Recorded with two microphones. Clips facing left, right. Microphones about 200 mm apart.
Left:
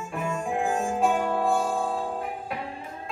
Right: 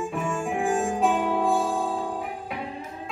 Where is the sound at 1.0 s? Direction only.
Centre (ahead or behind).